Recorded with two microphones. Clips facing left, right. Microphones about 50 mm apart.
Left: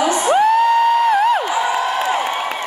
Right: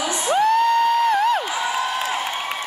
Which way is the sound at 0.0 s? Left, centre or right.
Centre.